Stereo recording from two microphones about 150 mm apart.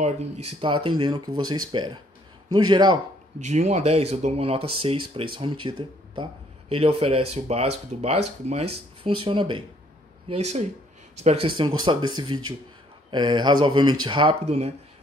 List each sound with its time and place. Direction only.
0.0 s a man's voice: 45° right (ahead or behind); by 3.0 s 30° right (ahead or behind)
3.3 s speech: 50° right (ahead or behind); by 9.6 s 35° right (ahead or behind)
10.2 s speech: 45° right (ahead or behind)